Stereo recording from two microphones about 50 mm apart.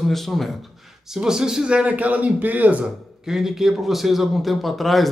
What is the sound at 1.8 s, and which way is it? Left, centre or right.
A man's voice, right.